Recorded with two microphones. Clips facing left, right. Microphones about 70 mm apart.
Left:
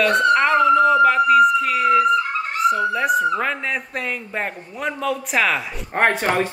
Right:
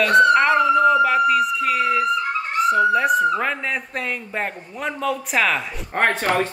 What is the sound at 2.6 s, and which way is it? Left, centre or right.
Speech, centre.